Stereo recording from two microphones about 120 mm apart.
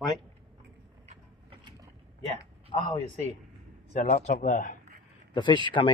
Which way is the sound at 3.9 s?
90° left.